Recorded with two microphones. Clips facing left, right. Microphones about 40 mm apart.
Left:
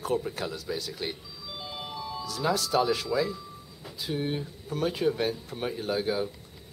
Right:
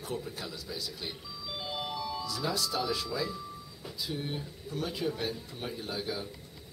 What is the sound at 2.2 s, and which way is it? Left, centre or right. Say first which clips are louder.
Speech: left 8 dB; left.